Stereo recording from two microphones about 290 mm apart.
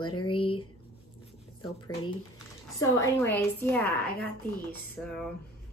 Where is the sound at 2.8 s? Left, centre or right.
Centre.